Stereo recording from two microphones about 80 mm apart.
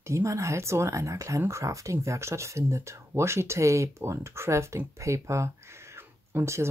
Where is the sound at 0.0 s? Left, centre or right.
Right.